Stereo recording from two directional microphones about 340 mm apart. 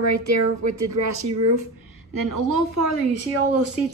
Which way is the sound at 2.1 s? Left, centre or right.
Right.